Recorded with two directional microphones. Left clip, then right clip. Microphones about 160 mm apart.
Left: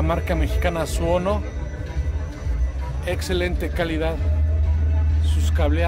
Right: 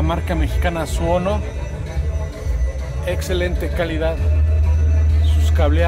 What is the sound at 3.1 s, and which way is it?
A man's voice, 5° left (ahead or behind).